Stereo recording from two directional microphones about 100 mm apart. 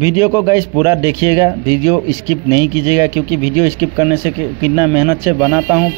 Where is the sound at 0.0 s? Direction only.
25° right (ahead or behind).